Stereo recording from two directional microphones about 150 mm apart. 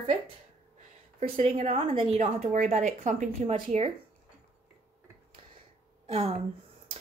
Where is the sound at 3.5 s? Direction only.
40° right (ahead or behind).